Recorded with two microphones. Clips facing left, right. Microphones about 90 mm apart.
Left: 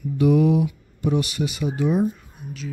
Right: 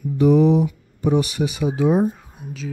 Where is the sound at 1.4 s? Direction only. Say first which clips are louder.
Right 3 dB; 80° right.